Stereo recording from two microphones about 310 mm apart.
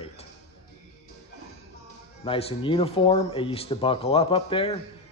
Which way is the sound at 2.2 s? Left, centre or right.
Centre.